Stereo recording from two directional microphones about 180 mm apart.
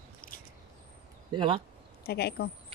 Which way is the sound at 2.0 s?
60° left (ahead or behind).